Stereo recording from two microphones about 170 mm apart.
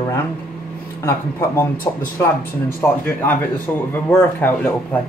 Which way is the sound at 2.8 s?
15° left (ahead or behind).